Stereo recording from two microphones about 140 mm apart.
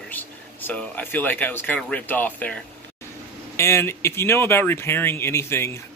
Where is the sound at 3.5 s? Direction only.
20° left (ahead or behind).